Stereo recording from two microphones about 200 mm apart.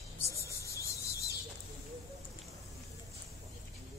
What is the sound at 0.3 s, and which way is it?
Rub, 15° left (ahead or behind).